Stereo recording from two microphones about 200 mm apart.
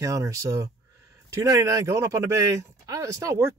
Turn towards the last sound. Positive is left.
turn(degrees=-15)  # may be behind; listen again after turning